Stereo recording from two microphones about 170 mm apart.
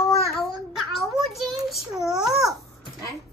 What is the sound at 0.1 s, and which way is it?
Child singing, centre (ahead or behind).